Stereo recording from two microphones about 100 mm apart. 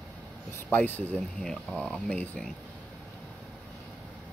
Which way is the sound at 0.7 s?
15° left (ahead or behind).